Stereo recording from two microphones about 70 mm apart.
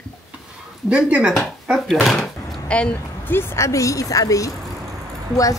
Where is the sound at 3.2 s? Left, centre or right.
Left.